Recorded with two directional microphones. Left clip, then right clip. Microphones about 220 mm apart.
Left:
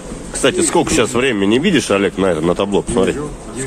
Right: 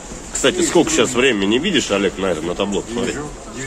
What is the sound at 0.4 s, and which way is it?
Speech, 25° left (ahead or behind).